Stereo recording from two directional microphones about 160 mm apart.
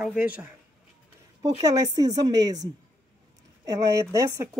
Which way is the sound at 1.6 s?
25° right (ahead or behind).